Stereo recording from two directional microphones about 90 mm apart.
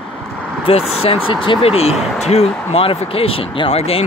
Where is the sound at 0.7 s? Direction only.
90° left.